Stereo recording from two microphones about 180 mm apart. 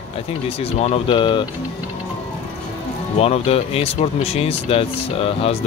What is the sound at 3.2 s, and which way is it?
Speech, 35° left (ahead or behind).